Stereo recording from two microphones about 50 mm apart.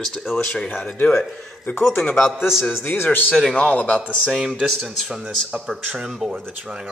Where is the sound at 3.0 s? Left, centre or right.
Left.